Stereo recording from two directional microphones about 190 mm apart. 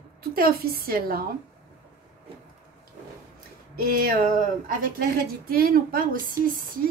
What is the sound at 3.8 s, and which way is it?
Speech, 50° right (ahead or behind).